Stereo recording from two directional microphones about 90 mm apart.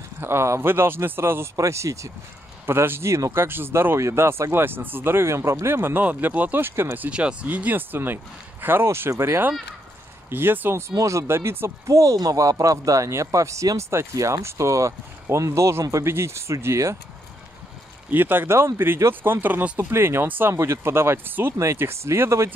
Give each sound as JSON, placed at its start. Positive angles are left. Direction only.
{"t": 0.2, "sound": "speech", "side_deg": -30}
{"t": 10.9, "sound": "speech", "side_deg": -35}
{"t": 18.1, "sound": "speech", "side_deg": -25}
{"t": 19.8, "sound": "speech", "side_deg": -30}